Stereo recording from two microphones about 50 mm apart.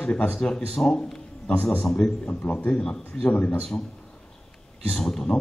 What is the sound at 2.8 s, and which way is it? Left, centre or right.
Speech, centre.